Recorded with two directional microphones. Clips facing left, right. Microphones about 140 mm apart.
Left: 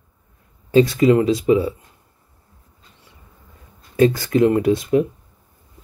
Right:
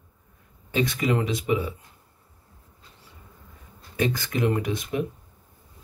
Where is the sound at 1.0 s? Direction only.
25° left (ahead or behind).